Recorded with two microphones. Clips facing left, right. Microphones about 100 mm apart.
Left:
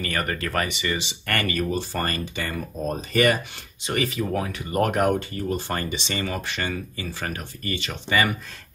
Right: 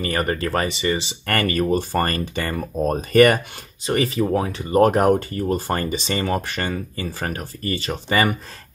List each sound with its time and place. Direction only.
0.0 s speech: 30° right (ahead or behind); by 3.3 s 50° right (ahead or behind)
3.8 s speech: 35° right (ahead or behind)